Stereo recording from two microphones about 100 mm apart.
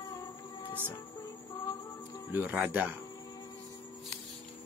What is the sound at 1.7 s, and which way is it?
Music, 35° left (ahead or behind).